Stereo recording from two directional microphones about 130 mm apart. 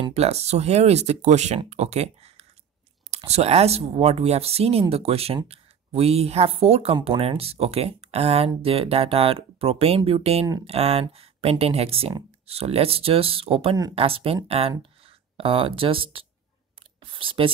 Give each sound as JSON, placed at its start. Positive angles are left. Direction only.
{"t": 0.1, "sound": "speech", "side_deg": -55}